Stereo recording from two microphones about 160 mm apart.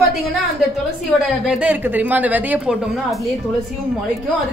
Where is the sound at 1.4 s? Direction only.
5° right (ahead or behind).